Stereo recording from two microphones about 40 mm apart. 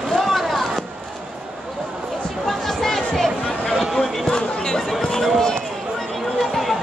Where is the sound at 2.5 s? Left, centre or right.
Centre.